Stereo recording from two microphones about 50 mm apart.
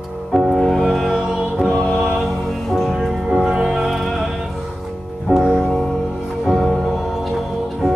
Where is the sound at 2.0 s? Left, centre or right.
Centre.